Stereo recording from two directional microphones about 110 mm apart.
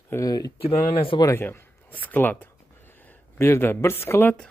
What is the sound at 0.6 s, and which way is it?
Speech, 60° left (ahead or behind).